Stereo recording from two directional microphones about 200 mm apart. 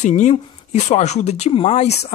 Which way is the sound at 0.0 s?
35° left (ahead or behind).